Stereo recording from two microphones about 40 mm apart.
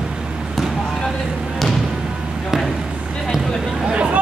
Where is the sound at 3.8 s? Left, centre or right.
Right.